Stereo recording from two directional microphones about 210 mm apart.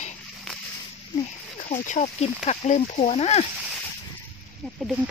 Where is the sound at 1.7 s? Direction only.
35° left (ahead or behind).